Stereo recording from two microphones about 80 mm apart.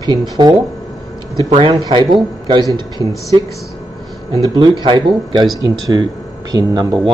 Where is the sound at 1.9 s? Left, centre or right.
Right.